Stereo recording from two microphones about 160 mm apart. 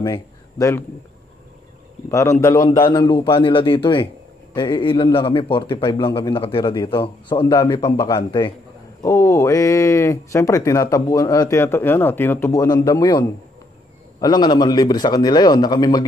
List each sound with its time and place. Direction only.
0.0 s speech: 25° left (ahead or behind)
2.0 s a man's voice: 20° left (ahead or behind)